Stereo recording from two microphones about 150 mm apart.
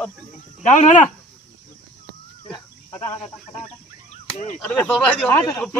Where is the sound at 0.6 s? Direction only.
55° left (ahead or behind).